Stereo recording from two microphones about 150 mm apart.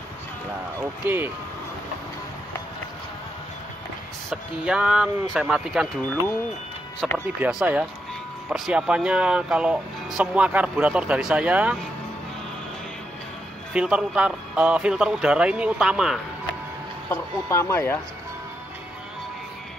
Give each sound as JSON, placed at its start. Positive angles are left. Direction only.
{"t": 1.0, "sound": "speech", "side_deg": -15}
{"t": 4.3, "sound": "speech", "side_deg": -5}
{"t": 7.0, "sound": "speech", "side_deg": -5}
{"t": 13.7, "sound": "speech", "side_deg": -5}
{"t": 17.1, "sound": "speech", "side_deg": 20}